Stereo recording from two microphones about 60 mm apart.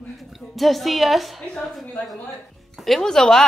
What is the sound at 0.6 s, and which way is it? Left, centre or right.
Speech, centre.